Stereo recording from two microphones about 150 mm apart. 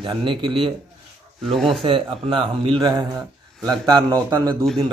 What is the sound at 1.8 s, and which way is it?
A man's voice, 35° right (ahead or behind).